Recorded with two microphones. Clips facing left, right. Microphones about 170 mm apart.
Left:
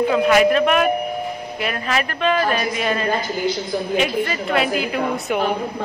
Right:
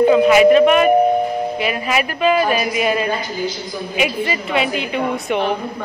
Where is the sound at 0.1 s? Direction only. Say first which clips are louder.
Right 3 dB; 5° right (ahead or behind).